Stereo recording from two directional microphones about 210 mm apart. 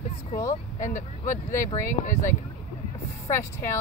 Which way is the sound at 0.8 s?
40° left (ahead or behind).